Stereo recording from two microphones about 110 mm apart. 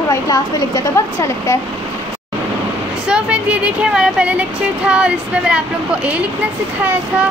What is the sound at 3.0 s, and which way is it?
Speech, 10° right (ahead or behind).